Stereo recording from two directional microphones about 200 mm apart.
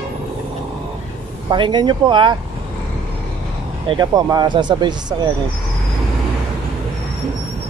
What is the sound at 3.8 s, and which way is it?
Speech, 20° right (ahead or behind).